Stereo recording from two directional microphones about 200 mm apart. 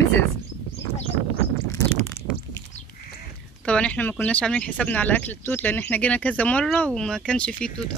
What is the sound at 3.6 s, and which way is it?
Speech, 5° left (ahead or behind).